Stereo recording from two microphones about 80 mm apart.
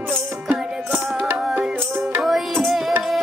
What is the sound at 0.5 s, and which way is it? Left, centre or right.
Music, right.